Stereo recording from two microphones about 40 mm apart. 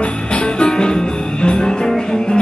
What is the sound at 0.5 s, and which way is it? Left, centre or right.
Music, left.